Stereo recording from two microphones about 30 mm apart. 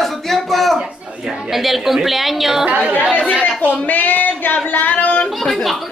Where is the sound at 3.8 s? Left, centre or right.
Left.